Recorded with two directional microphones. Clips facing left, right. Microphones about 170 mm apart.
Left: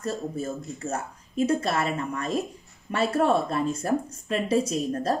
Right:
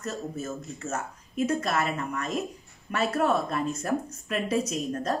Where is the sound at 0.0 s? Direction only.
35° left (ahead or behind).